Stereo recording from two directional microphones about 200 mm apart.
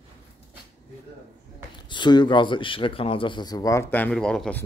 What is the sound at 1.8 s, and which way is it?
Speech, 25° left (ahead or behind).